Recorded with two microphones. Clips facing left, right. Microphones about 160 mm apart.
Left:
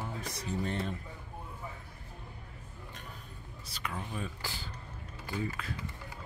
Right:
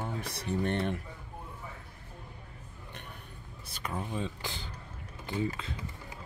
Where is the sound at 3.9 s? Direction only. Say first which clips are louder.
Right 5 dB; 25° right (ahead or behind).